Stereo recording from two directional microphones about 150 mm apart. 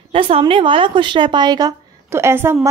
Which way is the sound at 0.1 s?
35° right (ahead or behind).